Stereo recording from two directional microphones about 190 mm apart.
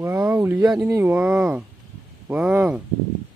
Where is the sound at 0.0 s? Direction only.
15° right (ahead or behind).